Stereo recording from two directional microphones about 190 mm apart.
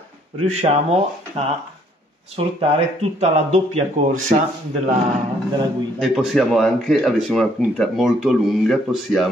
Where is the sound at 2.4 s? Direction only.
30° right (ahead or behind).